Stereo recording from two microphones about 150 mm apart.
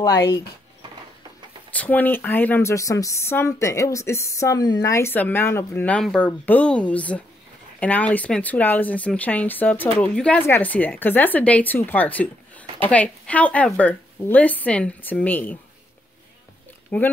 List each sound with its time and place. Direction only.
0.0 s speech: 25° left (ahead or behind)
1.7 s speech: 10° left (ahead or behind)
16.9 s speech: 10° left (ahead or behind)